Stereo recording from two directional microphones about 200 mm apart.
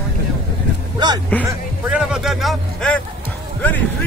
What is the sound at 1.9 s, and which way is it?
Speech, 5° right (ahead or behind).